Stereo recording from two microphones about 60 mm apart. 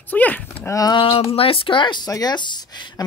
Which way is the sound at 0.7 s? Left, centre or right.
Left.